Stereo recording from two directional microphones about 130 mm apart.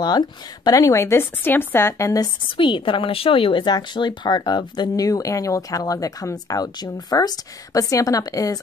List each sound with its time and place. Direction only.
0.0 s a woman's voice: 30° left (ahead or behind)
2.5 s a woman's voice: 40° left (ahead or behind)